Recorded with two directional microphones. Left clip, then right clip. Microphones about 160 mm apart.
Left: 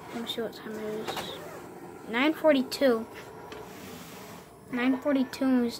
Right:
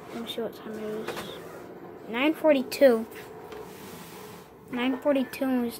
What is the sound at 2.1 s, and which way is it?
Speech, 10° left (ahead or behind).